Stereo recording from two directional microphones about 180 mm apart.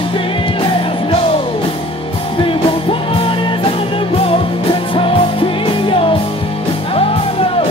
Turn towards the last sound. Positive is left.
turn(degrees=30)  # may be behind; listen again after turning